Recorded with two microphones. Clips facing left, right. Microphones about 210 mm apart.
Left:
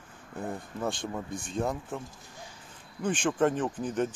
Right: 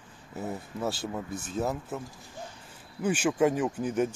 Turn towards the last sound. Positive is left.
turn(degrees=-10)  # may be behind; listen again after turning